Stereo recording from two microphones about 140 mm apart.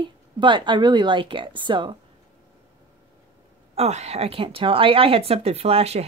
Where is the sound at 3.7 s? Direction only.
50° right (ahead or behind).